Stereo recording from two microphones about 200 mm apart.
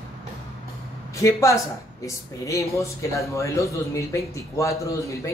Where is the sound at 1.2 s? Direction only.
15° left (ahead or behind).